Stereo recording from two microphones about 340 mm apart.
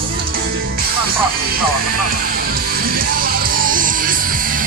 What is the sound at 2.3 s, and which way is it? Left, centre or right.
Music, right.